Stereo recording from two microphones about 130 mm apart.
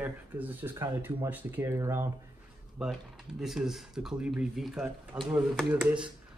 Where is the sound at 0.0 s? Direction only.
15° right (ahead or behind).